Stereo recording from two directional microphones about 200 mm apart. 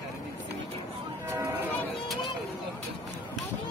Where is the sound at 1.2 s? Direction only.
15° right (ahead or behind).